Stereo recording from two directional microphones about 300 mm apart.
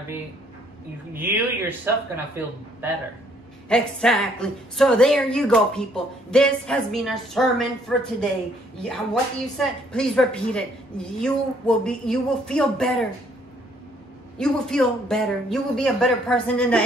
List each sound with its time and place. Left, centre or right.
1.1 s a man's voice: centre
14.4 s a man's voice: centre